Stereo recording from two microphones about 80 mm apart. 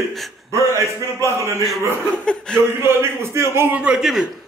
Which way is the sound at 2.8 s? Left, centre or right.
Right.